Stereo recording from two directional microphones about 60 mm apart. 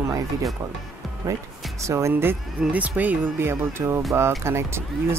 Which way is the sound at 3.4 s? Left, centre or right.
Right.